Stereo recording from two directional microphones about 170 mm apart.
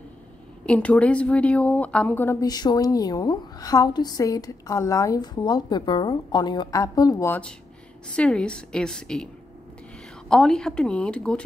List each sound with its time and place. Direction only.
0.7 s speech: 5° left (ahead or behind)
2.4 s a woman's voice: 25° left (ahead or behind); by 11.4 s 5° left (ahead or behind)